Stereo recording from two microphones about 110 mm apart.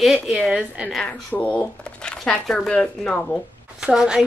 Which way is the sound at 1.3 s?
15° left (ahead or behind).